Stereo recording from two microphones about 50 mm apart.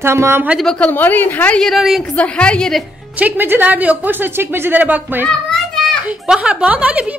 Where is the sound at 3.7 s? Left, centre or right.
Right.